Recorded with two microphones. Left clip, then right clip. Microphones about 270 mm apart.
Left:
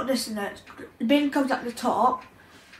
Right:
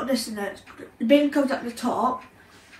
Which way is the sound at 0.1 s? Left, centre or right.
Left.